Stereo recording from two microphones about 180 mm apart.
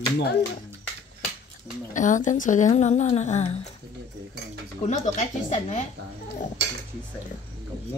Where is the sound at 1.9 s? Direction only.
45° left (ahead or behind).